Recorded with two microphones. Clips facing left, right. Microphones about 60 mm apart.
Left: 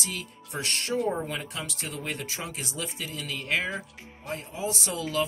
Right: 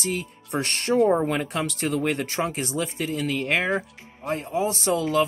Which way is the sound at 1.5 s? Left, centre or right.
Right.